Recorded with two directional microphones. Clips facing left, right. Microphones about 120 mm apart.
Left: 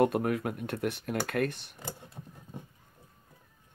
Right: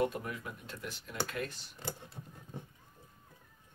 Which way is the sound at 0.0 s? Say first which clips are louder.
Left 8 dB; 65° left (ahead or behind).